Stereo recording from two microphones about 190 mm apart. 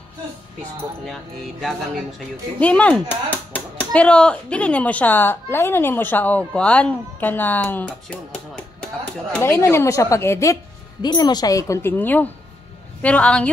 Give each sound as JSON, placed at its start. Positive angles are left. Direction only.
{"t": 1.0, "sound": "speech", "side_deg": 0}